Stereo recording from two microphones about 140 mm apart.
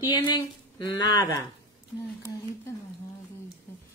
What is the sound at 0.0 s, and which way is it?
Speech, 35° left (ahead or behind).